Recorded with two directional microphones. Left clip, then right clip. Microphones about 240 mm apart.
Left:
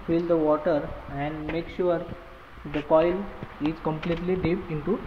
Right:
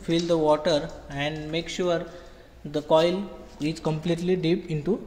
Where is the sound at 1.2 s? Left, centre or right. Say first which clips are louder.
Right 2 dB; right.